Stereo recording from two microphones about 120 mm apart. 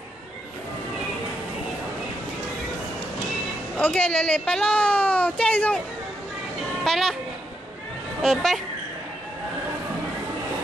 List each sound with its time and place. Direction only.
3.7 s a woman's voice: 10° left (ahead or behind)
6.8 s music: centre (ahead or behind)
8.2 s speech: centre (ahead or behind)